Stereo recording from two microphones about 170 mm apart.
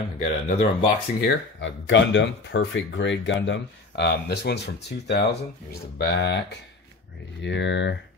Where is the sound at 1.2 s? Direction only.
90° left.